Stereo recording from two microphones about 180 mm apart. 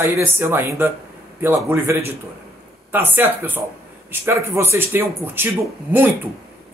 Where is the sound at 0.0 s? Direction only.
15° right (ahead or behind).